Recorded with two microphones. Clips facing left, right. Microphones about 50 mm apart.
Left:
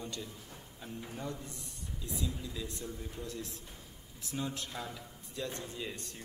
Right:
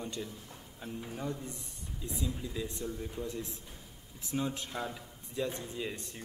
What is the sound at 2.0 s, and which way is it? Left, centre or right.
A man's voice, right.